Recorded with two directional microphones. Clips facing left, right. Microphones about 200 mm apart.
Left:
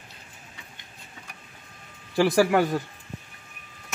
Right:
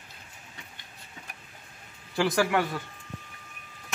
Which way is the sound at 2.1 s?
35° left (ahead or behind).